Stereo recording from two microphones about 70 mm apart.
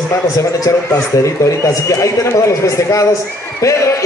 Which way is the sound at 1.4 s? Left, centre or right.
Left.